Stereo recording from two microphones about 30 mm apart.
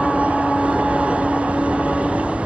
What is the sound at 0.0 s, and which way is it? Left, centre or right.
Vehicle, right.